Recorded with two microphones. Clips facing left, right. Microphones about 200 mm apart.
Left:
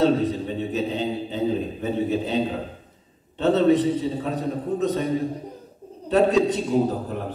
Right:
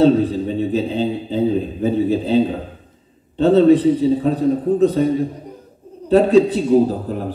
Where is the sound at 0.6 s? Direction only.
35° right (ahead or behind).